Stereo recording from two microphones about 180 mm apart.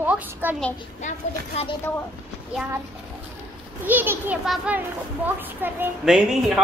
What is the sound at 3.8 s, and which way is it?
A woman's voice, 10° right (ahead or behind).